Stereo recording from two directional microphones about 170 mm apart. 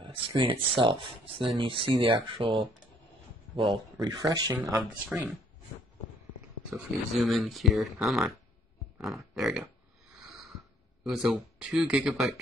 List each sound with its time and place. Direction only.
0.0 s speech: 30° right (ahead or behind)
6.7 s speech: centre (ahead or behind)
10.1 s a sound: centre (ahead or behind)
11.1 s speech: centre (ahead or behind)